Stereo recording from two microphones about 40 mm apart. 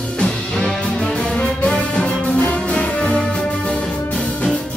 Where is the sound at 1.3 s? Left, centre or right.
Left.